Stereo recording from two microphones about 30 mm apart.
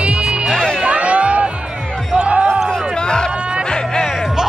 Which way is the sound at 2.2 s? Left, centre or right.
Right.